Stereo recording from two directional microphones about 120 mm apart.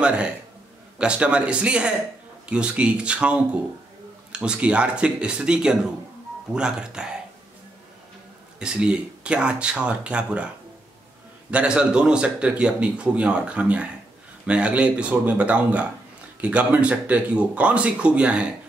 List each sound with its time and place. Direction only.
0.0 s speech: 10° right (ahead or behind)
8.5 s speech: 5° right (ahead or behind)
11.5 s speech: 10° right (ahead or behind)